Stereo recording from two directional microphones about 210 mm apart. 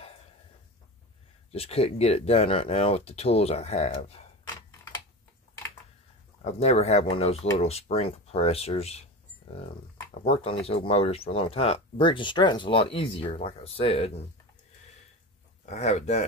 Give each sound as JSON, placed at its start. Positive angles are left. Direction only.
{"t": 1.5, "sound": "speech", "side_deg": 30}
{"t": 4.6, "sound": "typing", "side_deg": 15}
{"t": 6.4, "sound": "speech", "side_deg": 30}
{"t": 10.1, "sound": "speech", "side_deg": 30}
{"t": 15.6, "sound": "speech", "side_deg": 35}